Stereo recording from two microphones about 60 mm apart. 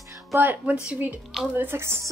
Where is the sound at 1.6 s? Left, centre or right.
Right.